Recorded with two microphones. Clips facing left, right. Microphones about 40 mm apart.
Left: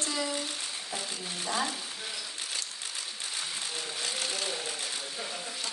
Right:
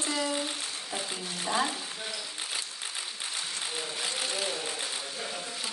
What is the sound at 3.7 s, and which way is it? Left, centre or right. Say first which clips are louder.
Sewing machine: right 2 dB; centre.